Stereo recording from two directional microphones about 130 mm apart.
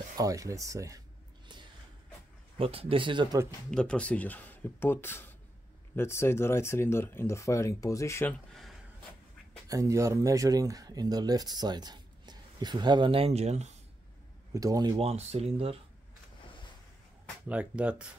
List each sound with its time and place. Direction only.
0.2 s speech: 25° right (ahead or behind)
2.5 s speech: 45° right (ahead or behind)
3.7 s speech: 10° left (ahead or behind)
8.3 s speech: centre (ahead or behind)
9.7 s speech: 25° right (ahead or behind); by 13.7 s 55° right (ahead or behind)
14.5 s speech: 25° right (ahead or behind)
15.0 s speech: 50° right (ahead or behind)
17.5 s speech: 10° right (ahead or behind)